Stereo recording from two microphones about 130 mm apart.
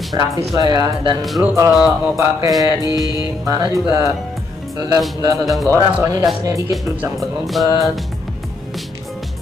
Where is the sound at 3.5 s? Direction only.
25° right (ahead or behind).